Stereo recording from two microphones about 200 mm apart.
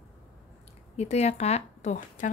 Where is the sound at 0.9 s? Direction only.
35° left (ahead or behind).